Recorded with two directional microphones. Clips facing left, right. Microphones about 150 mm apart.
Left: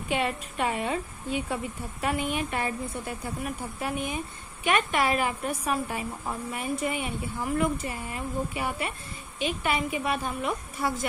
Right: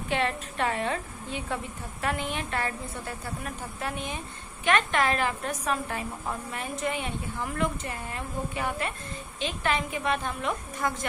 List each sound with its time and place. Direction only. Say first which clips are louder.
0.1 s a woman's voice: even; 10° left (ahead or behind)